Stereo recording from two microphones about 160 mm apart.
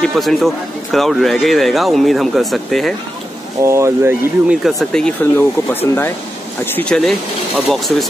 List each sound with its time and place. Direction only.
0.0 s speech: centre (ahead or behind)
3.6 s speech: 20° right (ahead or behind)
4.6 s speech: centre (ahead or behind)